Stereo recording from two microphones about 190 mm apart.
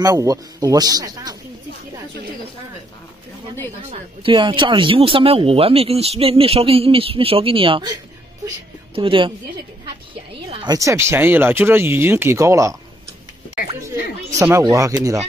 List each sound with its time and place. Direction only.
0.0 s speech: 20° right (ahead or behind)
4.2 s speech: 25° right (ahead or behind)
8.9 s speech: 30° right (ahead or behind)
10.3 s speech: 25° right (ahead or behind)
14.4 s speech: 15° right (ahead or behind)